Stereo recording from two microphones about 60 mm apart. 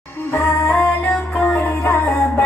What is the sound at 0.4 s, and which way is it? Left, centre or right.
Music, left.